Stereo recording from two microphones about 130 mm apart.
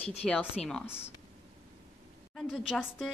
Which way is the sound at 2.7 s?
10° left (ahead or behind).